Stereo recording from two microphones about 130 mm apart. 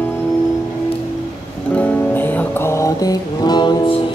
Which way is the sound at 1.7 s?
10° left (ahead or behind).